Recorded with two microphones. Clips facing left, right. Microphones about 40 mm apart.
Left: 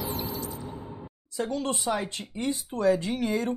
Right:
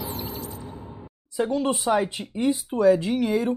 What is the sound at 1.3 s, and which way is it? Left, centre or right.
Speech, centre.